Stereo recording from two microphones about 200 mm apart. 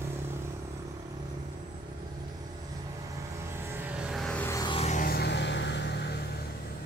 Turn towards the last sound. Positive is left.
turn(degrees=55)  # may be behind; listen again after turning